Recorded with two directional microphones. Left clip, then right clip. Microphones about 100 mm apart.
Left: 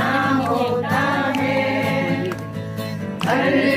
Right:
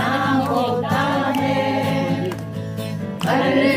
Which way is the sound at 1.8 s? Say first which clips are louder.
Even; 15° right (ahead or behind).